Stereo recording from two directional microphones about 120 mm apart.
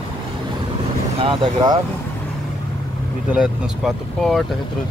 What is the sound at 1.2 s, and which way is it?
Speech, 45° right (ahead or behind).